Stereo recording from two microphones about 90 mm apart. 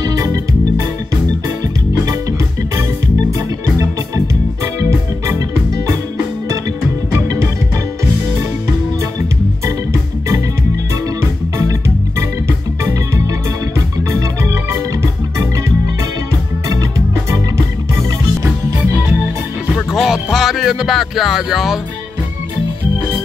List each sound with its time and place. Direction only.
0.0 s music: 40° right (ahead or behind)
3.3 s music: 40° right (ahead or behind)
7.1 s music: 35° right (ahead or behind)
19.7 s music: 5° right (ahead or behind)